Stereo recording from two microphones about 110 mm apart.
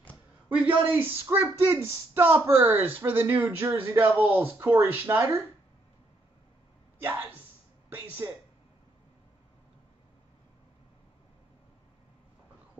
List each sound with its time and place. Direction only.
0.5 s speech: 15° right (ahead or behind)
7.1 s speech: 20° right (ahead or behind)
8.2 s speech: 30° right (ahead or behind)